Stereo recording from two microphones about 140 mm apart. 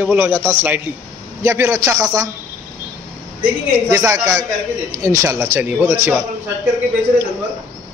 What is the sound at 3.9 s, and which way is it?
A man's voice, 20° right (ahead or behind).